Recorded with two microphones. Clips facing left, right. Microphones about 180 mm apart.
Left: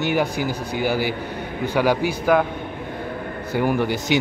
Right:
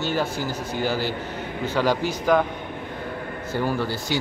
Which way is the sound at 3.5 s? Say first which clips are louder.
Left 4 dB; 15° left (ahead or behind).